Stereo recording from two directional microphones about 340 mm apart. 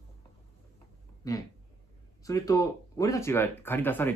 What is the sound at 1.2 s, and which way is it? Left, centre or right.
Speech, centre.